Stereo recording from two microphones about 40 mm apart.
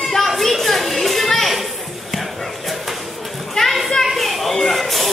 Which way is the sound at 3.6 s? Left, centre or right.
Centre.